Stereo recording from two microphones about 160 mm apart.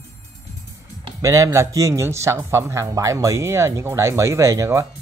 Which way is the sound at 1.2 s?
20° right (ahead or behind).